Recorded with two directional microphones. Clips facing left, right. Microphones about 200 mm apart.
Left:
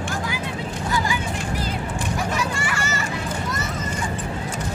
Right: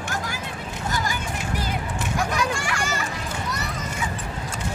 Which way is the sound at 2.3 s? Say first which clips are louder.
Even; 5° left (ahead or behind).